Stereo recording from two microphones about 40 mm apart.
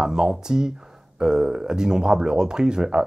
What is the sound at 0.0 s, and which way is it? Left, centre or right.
Speech, centre.